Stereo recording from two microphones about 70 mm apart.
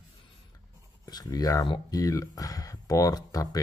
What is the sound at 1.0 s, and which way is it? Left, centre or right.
Speech, left.